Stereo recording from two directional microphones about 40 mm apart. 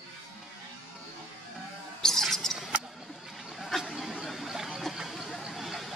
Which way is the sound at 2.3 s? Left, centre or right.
Centre.